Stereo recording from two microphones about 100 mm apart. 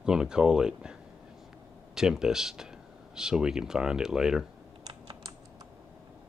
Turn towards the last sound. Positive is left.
turn(degrees=-45)  # may be behind; listen again after turning